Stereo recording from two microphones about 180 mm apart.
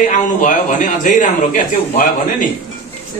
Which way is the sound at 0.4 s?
45° left (ahead or behind).